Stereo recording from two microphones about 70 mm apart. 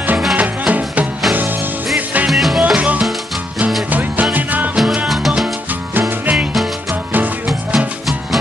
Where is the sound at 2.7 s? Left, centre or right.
Centre.